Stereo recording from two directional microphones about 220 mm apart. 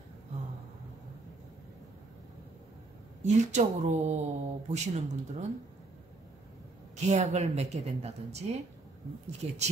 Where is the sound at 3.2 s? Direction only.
30° right (ahead or behind).